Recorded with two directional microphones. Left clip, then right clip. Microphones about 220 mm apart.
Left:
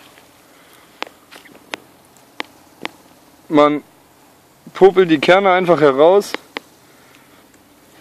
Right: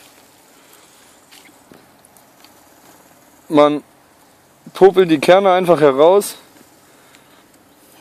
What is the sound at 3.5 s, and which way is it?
Speech, 30° right (ahead or behind).